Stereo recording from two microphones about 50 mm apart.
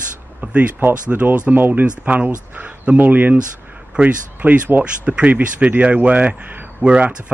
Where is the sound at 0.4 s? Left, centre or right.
Right.